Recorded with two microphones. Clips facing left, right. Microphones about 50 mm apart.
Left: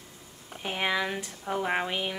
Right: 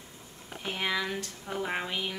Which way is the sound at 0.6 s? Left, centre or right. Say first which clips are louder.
Left 3 dB; centre.